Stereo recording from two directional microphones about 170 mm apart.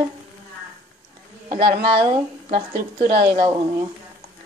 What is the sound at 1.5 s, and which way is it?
Speech, 55° right (ahead or behind).